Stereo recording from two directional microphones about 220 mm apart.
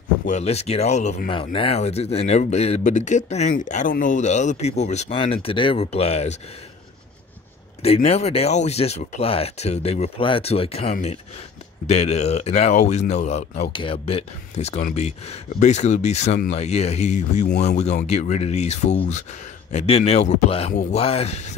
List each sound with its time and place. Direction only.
0.3 s speech: 30° left (ahead or behind)
7.8 s speech: 30° left (ahead or behind)